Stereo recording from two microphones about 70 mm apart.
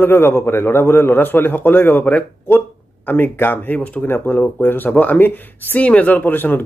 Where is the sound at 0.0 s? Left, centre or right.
Left.